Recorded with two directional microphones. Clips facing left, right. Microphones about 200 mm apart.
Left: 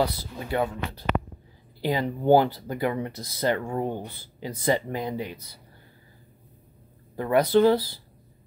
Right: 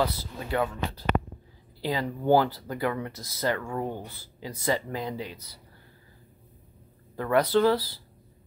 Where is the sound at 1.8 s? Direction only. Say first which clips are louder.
Left 3 dB; 20° left (ahead or behind).